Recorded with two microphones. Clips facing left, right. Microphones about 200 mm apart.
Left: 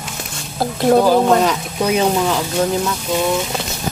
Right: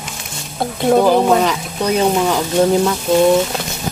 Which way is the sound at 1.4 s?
5° left (ahead or behind).